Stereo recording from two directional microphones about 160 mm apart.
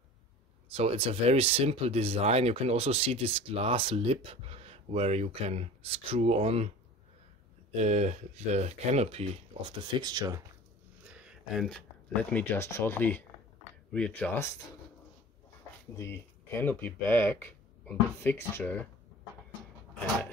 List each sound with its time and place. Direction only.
0.7 s speech: 35° right (ahead or behind)
7.7 s speech: 45° right (ahead or behind); by 10.4 s 20° right (ahead or behind)
11.1 s speech: 5° right (ahead or behind); by 14.5 s 10° left (ahead or behind)
16.1 s speech: 15° left (ahead or behind)